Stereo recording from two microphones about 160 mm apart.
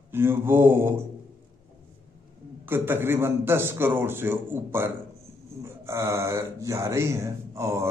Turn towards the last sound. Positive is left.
turn(degrees=-15)  # may be behind; listen again after turning